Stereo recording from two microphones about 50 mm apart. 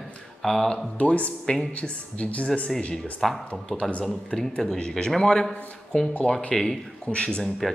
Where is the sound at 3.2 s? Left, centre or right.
Centre.